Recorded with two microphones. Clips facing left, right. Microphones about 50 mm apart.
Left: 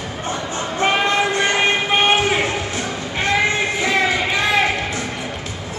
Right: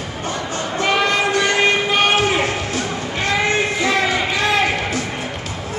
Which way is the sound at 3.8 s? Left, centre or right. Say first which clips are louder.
Even; left.